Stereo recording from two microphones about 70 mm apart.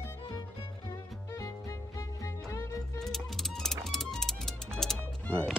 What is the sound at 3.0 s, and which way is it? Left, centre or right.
Music, centre.